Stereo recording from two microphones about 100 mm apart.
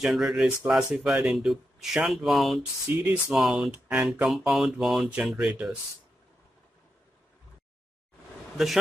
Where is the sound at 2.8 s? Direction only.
20° right (ahead or behind).